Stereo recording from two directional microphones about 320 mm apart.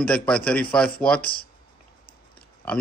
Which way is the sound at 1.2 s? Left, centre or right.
Left.